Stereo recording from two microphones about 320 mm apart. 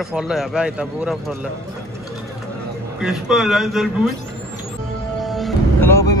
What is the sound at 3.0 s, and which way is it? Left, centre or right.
Speech, centre.